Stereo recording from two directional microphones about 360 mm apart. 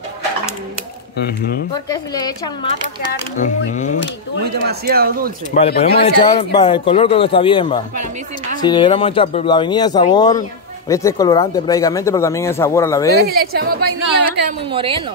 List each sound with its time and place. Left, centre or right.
1.1 s speech: left
1.9 s speech: centre
3.1 s speech: left
4.6 s a woman's voice: right
5.5 s speech: centre
13.1 s a woman's voice: right
14.7 s a woman's voice: centre